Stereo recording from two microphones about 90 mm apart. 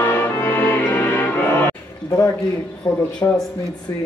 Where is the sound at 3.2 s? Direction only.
30° left (ahead or behind).